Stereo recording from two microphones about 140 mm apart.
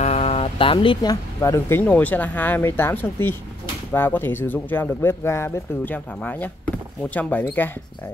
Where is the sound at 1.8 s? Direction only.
10° left (ahead or behind).